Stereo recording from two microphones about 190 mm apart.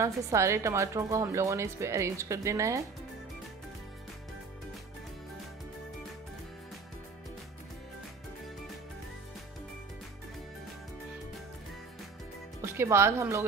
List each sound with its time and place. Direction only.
0.0 s a woman's voice: 15° right (ahead or behind)
12.7 s a woman's voice: 15° right (ahead or behind)